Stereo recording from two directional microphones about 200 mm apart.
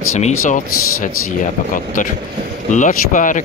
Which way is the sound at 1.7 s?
40° left (ahead or behind).